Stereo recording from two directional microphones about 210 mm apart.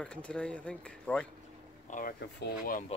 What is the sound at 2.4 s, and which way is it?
Speech, 40° left (ahead or behind).